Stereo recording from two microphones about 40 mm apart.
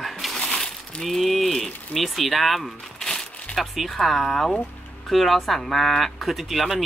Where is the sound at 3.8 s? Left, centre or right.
Centre.